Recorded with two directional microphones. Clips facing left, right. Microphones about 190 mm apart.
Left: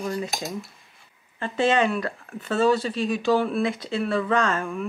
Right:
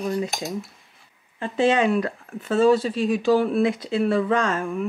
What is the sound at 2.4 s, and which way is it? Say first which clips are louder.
Speech: right 3 dB; 5° right (ahead or behind).